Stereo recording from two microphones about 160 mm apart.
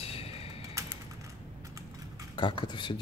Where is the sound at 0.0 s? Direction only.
35° left (ahead or behind).